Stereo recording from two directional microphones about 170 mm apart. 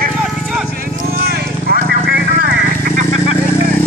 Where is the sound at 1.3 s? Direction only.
70° right (ahead or behind).